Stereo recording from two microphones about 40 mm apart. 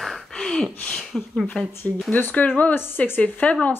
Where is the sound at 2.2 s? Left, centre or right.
Left.